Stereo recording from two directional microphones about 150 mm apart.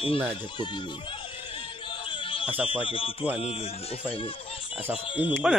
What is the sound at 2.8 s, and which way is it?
Speech, 35° left (ahead or behind).